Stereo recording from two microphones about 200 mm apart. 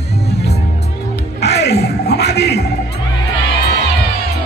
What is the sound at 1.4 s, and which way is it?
Music, 55° left (ahead or behind).